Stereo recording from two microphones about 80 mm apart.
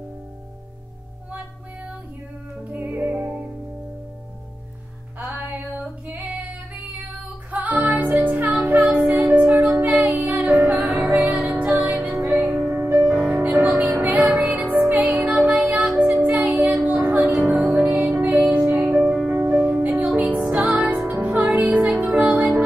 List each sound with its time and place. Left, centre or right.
2.7 s music: right
5.4 s female singing: right
7.5 s music: centre
10.8 s music: centre
11.5 s music: centre
17.2 s music: centre
17.5 s music: right
22.0 s music: centre